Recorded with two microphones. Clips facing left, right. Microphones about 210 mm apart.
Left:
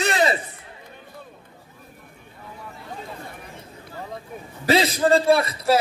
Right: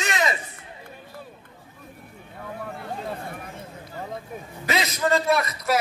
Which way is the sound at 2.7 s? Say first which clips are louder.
Right 3 dB; 55° right (ahead or behind).